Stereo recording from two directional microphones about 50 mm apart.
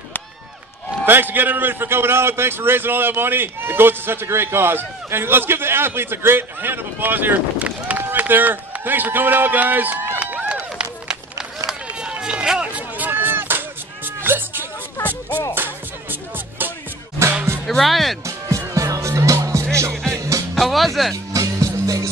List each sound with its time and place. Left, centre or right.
1.0 s a man's voice: right
10.5 s run: centre
12.7 s a sound: right
15.0 s music: left
15.5 s music: right
17.6 s speech: centre
18.8 s music: right
20.5 s speech: centre
21.3 s music: right